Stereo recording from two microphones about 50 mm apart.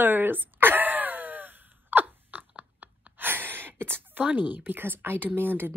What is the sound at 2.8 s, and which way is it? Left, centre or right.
Gasp, right.